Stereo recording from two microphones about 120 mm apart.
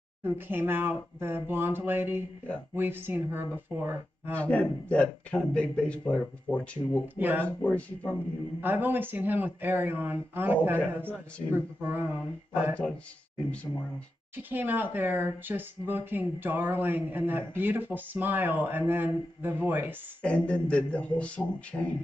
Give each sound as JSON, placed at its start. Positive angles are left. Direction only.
{"t": 0.2, "sound": "speech", "side_deg": -15}
{"t": 4.4, "sound": "a man's voice", "side_deg": 10}
{"t": 7.2, "sound": "speech", "side_deg": -15}
{"t": 7.4, "sound": "a man's voice", "side_deg": 15}
{"t": 8.5, "sound": "speech", "side_deg": -15}
{"t": 14.3, "sound": "speech", "side_deg": -15}
{"t": 20.2, "sound": "a man's voice", "side_deg": 10}